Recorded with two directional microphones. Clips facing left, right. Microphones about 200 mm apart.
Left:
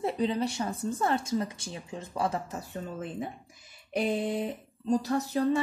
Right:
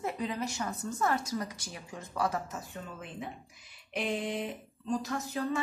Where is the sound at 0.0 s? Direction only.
30° left (ahead or behind).